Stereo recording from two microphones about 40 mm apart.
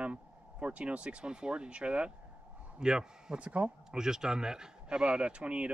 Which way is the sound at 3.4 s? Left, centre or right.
Right.